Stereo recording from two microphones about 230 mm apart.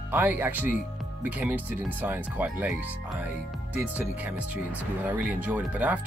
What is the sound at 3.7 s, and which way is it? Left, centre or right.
Speech, centre.